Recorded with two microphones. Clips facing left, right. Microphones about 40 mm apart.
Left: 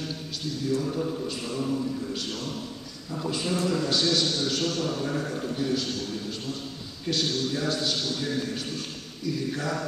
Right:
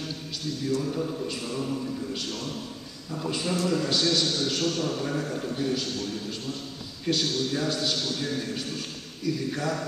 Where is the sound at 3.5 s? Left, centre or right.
Centre.